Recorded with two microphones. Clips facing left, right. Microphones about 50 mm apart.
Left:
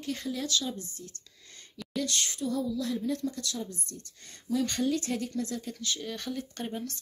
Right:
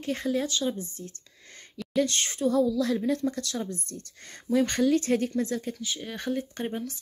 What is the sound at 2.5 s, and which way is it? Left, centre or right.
Speech, right.